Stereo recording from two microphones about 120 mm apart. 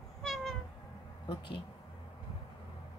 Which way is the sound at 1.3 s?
45° left (ahead or behind).